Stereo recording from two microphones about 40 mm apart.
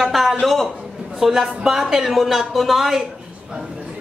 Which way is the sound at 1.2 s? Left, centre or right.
Centre.